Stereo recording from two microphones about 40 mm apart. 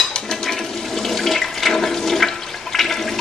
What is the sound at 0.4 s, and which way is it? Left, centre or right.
Toilet flush, centre.